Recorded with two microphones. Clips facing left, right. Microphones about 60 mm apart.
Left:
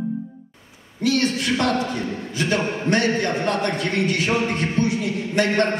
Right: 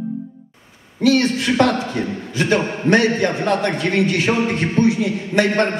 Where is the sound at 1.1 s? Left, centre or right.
Right.